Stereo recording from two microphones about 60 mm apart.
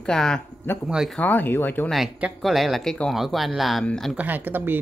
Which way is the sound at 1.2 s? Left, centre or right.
Left.